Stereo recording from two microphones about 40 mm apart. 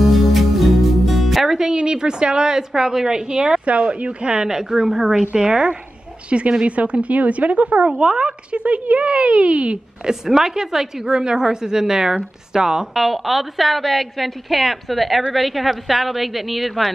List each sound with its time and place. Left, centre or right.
0.0 s music: centre
1.4 s music: centre
1.8 s a woman's voice: right
3.6 s a woman's voice: right; by 5.1 s centre
5.1 s a woman's voice: right
6.6 s a woman's voice: right
10.0 s a woman's voice: centre
12.9 s a woman's voice: centre